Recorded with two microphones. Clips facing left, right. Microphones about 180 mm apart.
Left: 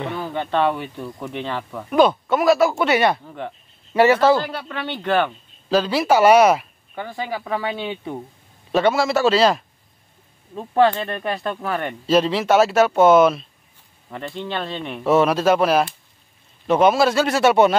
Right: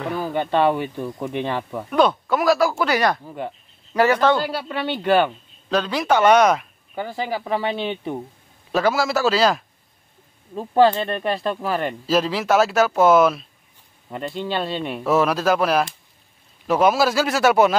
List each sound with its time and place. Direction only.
0.0 s speech: 5° right (ahead or behind)
1.9 s speech: centre (ahead or behind)
3.3 s speech: 10° right (ahead or behind)
3.9 s speech: 5° left (ahead or behind)
4.6 s speech: 10° right (ahead or behind)
5.7 s speech: centre (ahead or behind)
7.2 s speech: 30° right (ahead or behind)
8.7 s speech: centre (ahead or behind)
10.7 s speech: 25° right (ahead or behind)
12.1 s speech: centre (ahead or behind)
15.0 s speech: centre (ahead or behind)